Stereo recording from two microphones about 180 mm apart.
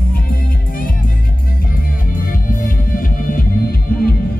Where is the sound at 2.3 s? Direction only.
50° left (ahead or behind).